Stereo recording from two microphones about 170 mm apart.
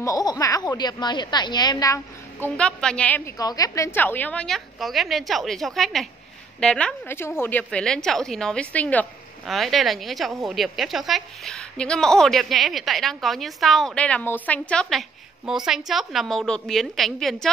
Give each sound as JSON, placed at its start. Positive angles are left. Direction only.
{"t": 0.0, "sound": "speech", "side_deg": 20}
{"t": 2.4, "sound": "a woman's voice", "side_deg": 5}
{"t": 3.3, "sound": "a woman's voice", "side_deg": 20}